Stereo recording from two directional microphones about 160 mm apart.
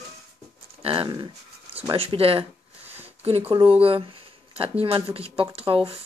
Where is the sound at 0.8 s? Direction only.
35° right (ahead or behind).